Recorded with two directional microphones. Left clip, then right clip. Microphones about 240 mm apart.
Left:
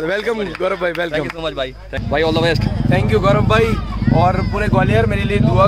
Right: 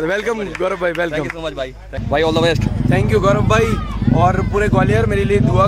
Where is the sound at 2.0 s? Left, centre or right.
Centre.